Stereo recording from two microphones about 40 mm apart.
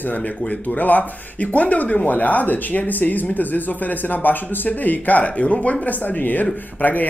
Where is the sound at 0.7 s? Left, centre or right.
Left.